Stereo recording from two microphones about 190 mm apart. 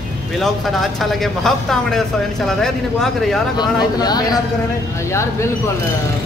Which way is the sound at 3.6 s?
20° left (ahead or behind).